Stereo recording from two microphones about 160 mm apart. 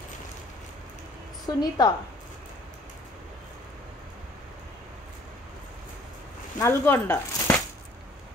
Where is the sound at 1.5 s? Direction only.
25° left (ahead or behind).